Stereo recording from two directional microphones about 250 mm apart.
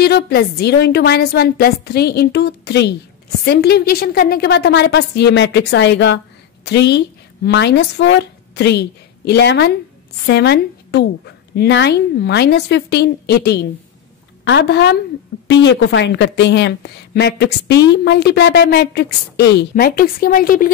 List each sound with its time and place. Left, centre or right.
0.0 s a woman's voice: left